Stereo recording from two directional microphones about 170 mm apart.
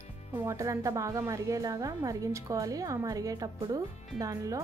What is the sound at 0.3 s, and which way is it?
Speech, 15° right (ahead or behind).